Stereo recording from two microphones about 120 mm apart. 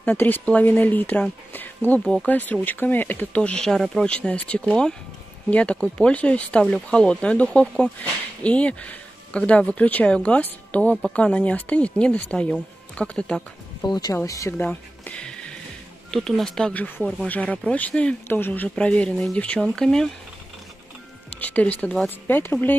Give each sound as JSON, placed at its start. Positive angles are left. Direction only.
{"t": 0.0, "sound": "speech", "side_deg": 15}
{"t": 13.8, "sound": "speech", "side_deg": 35}
{"t": 14.6, "sound": "a sound", "side_deg": 15}
{"t": 16.1, "sound": "speech", "side_deg": 0}
{"t": 21.4, "sound": "speech", "side_deg": 15}